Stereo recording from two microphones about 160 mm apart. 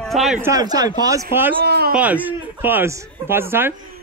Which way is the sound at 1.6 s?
90° right.